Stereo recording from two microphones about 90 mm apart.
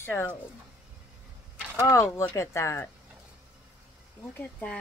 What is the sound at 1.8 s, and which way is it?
Speech, 35° left (ahead or behind).